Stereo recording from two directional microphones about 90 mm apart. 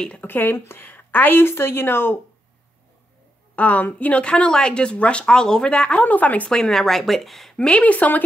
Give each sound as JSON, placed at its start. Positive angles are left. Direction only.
{"t": 0.0, "sound": "a woman's voice", "side_deg": 15}
{"t": 3.5, "sound": "speech", "side_deg": 15}